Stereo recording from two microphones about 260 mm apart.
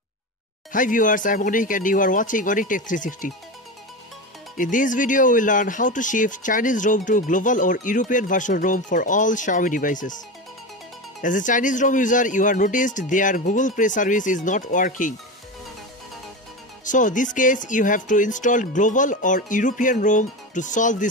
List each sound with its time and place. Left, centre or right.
0.7 s speech: left
4.6 s speech: left
11.1 s speech: left
16.8 s speech: left